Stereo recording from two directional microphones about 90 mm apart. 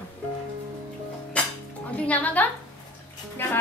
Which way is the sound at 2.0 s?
15° left (ahead or behind).